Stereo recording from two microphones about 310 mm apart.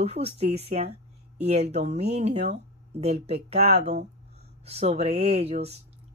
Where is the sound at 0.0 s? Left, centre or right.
Centre.